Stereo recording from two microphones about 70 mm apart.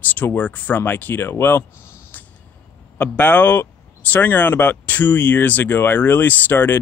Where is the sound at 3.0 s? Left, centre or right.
Left.